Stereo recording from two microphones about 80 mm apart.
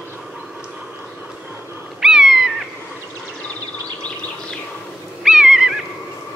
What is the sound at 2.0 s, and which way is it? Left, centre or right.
Cat, centre.